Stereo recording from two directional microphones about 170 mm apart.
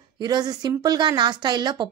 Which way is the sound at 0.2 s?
25° right (ahead or behind).